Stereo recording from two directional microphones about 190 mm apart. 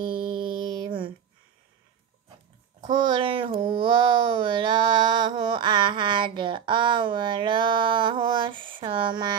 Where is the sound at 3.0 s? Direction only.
25° right (ahead or behind).